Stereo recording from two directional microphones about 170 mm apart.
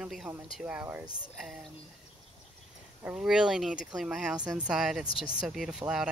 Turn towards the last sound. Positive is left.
turn(degrees=-5)  # may be behind; listen again after turning